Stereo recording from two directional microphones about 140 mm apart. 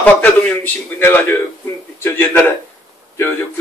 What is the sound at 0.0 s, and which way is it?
A man's voice, 10° left (ahead or behind).